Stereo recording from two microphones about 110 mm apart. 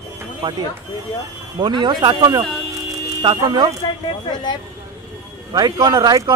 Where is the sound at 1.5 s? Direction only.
40° right (ahead or behind).